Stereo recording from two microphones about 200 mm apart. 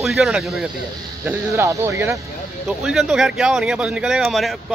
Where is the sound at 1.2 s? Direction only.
15° right (ahead or behind).